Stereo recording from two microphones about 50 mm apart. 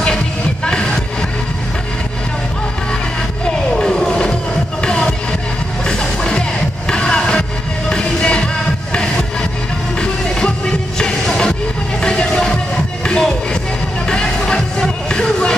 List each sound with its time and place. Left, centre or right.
0.7 s music: centre
3.4 s music: centre
6.9 s vehicle: centre
7.9 s music: centre